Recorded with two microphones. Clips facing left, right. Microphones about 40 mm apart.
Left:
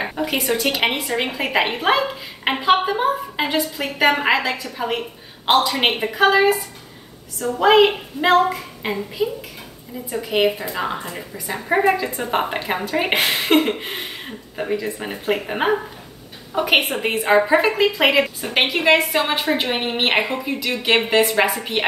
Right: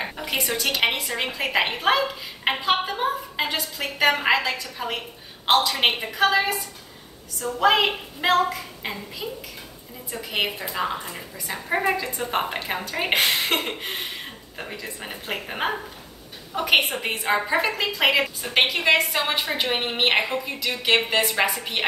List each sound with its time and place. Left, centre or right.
0.0 s a woman's voice: centre
7.6 s a woman's voice: centre
10.3 s a woman's voice: centre